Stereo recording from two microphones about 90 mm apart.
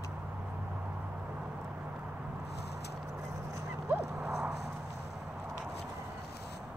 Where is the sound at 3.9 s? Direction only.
20° right (ahead or behind).